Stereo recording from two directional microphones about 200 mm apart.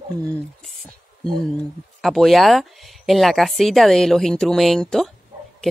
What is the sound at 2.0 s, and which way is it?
A woman's voice, centre (ahead or behind).